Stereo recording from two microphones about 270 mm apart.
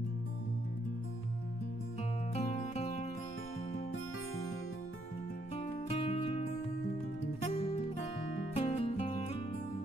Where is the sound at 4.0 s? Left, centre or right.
Left.